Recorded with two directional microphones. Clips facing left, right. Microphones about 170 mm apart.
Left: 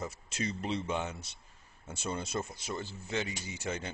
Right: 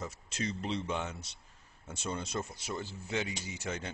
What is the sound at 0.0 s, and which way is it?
Speech, 5° left (ahead or behind).